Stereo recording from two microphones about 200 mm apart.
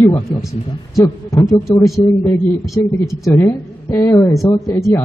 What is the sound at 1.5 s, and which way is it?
Speech, centre (ahead or behind).